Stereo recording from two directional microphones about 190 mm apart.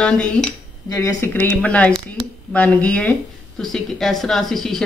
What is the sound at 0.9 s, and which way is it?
Speech, 15° left (ahead or behind).